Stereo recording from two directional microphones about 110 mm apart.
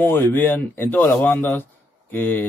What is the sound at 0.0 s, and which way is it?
A man's voice, 20° left (ahead or behind).